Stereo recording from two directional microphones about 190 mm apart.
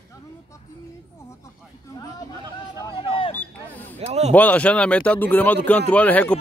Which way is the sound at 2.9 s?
25° left (ahead or behind).